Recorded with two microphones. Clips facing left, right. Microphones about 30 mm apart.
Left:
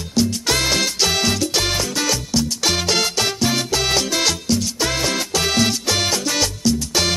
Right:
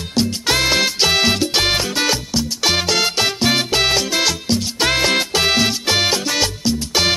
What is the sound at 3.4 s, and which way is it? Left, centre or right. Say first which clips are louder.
Music: right 5 dB; right.